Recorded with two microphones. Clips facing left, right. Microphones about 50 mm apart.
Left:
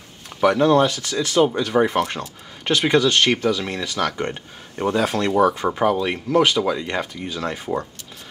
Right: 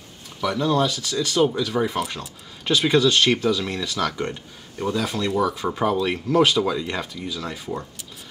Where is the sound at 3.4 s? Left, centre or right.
Centre.